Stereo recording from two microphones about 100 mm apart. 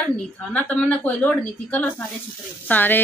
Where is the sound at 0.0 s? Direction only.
15° left (ahead or behind).